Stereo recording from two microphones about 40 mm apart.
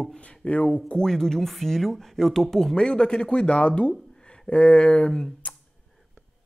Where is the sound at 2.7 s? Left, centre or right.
Left.